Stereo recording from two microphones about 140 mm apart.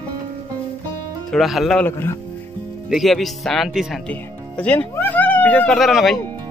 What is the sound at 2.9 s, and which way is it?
Speech, centre (ahead or behind).